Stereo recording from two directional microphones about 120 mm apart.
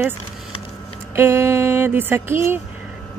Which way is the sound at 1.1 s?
20° right (ahead or behind).